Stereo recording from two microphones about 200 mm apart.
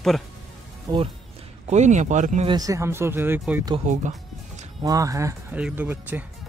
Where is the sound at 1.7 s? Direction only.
35° right (ahead or behind).